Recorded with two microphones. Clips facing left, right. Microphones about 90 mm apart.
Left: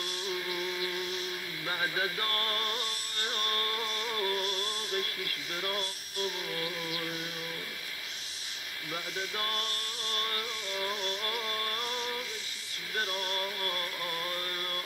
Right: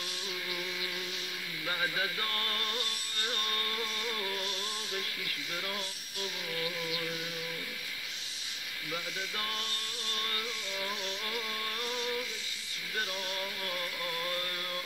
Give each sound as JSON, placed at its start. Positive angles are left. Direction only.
{"t": 1.7, "sound": "music", "side_deg": 20}
{"t": 4.4, "sound": "music", "side_deg": 60}
{"t": 10.7, "sound": "music", "side_deg": 15}
{"t": 13.1, "sound": "music", "side_deg": 60}
{"t": 13.4, "sound": "music", "side_deg": 0}